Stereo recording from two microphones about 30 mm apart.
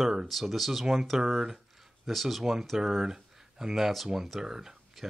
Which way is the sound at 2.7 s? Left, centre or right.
Centre.